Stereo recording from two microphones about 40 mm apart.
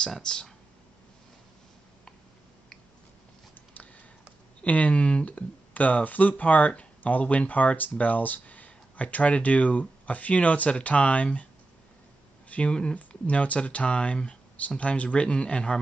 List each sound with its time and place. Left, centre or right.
0.2 s speech: centre
4.6 s speech: left
12.4 s a sound: left
13.1 s speech: left